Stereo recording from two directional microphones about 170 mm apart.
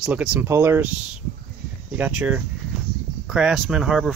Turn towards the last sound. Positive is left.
turn(degrees=-5)  # may be behind; listen again after turning